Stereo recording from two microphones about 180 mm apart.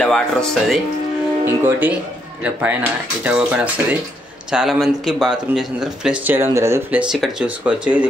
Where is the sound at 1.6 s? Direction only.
10° right (ahead or behind).